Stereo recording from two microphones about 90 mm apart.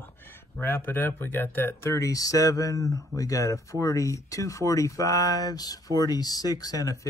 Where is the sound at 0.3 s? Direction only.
25° left (ahead or behind).